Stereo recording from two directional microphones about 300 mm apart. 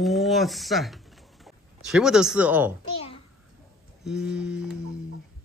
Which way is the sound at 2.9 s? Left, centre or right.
Centre.